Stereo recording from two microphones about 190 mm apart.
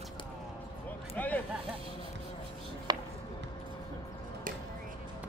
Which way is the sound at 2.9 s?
20° right (ahead or behind).